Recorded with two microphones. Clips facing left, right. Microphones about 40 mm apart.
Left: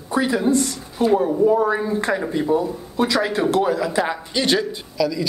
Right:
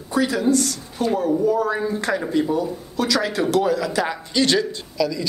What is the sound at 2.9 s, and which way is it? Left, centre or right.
A man's voice, left.